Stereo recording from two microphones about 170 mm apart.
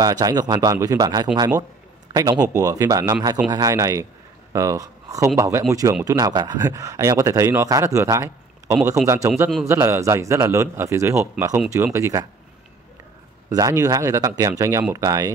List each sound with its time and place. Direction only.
0.0 s a man's voice: 20° right (ahead or behind)
13.5 s speech: 20° right (ahead or behind)